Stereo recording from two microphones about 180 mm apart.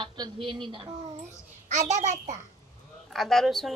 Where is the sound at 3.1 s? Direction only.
Centre (ahead or behind).